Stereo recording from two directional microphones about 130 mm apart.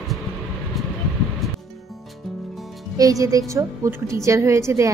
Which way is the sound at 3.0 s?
25° right (ahead or behind).